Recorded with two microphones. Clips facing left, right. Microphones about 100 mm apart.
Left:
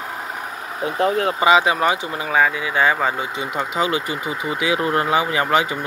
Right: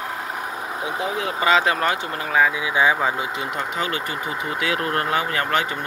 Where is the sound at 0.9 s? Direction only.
55° left (ahead or behind).